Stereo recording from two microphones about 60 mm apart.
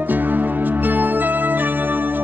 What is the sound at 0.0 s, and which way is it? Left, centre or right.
Music, right.